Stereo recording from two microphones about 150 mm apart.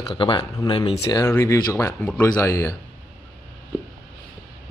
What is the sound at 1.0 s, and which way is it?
Speech, 20° left (ahead or behind).